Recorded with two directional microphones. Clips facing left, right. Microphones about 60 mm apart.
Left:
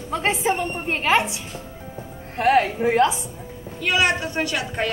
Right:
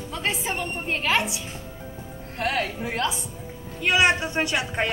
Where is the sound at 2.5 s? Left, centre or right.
Left.